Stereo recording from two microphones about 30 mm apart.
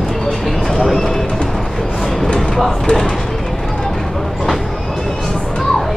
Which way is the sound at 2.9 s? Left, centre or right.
Left.